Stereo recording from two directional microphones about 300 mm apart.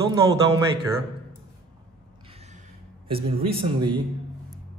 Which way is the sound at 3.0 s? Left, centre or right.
Centre.